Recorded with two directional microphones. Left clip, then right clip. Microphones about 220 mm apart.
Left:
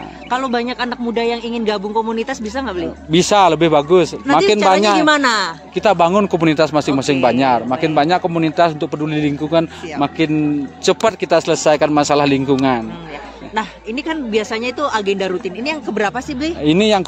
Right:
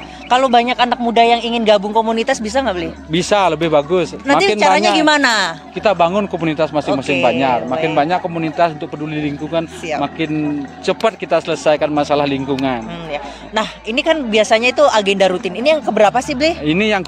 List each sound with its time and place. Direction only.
0.3 s speech: 20° right (ahead or behind)
3.1 s a man's voice: 40° left (ahead or behind)
5.0 s speech: 20° right (ahead or behind)
5.8 s a man's voice: 45° left (ahead or behind)
13.6 s speech: 25° right (ahead or behind)
16.6 s speech: 35° left (ahead or behind)